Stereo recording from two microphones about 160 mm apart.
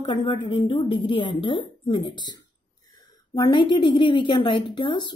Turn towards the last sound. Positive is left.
turn(degrees=30)  # may be behind; listen again after turning